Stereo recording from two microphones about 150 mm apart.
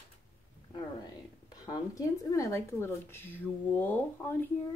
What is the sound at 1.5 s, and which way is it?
Speech, 25° left (ahead or behind).